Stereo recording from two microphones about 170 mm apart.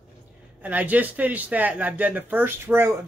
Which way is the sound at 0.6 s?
10° right (ahead or behind).